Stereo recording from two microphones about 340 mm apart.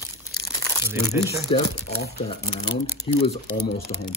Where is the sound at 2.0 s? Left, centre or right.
Left.